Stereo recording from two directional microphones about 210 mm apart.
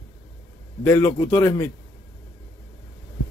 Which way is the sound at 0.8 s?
10° left (ahead or behind).